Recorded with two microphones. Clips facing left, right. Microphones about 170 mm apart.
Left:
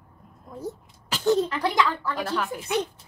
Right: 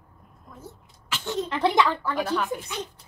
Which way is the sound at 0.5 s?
40° left (ahead or behind).